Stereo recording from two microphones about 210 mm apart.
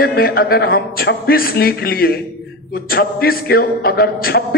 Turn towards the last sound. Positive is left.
turn(degrees=45)  # may be behind; listen again after turning